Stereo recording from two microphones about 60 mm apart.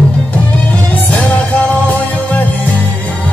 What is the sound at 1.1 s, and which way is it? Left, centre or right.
Music, left.